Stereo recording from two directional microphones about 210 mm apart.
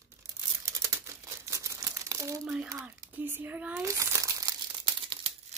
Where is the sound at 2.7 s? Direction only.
10° right (ahead or behind).